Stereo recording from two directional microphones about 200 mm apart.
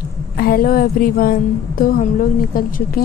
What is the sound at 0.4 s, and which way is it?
A woman's voice, 45° left (ahead or behind).